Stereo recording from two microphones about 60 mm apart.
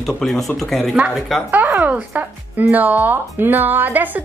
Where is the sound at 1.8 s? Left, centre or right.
Right.